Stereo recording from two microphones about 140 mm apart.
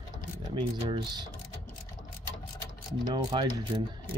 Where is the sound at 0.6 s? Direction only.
35° right (ahead or behind).